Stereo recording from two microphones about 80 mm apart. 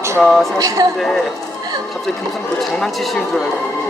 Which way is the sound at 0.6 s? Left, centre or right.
Right.